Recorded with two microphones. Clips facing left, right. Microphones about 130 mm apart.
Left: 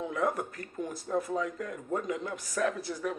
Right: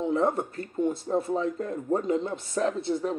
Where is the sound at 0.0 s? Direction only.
25° right (ahead or behind).